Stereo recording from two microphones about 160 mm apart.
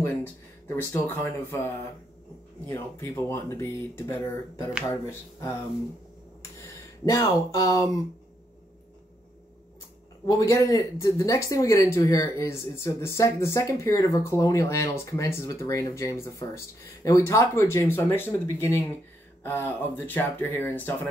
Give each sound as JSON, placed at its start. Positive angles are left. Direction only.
{"t": 0.0, "sound": "speech", "side_deg": 15}
{"t": 2.7, "sound": "speech", "side_deg": 15}
{"t": 7.1, "sound": "speech", "side_deg": 20}
{"t": 10.2, "sound": "speech", "side_deg": 20}